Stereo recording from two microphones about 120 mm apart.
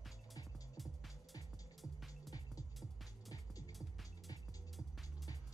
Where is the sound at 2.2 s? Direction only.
30° left (ahead or behind).